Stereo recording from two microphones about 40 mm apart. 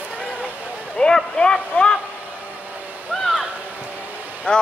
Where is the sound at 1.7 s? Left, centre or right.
Left.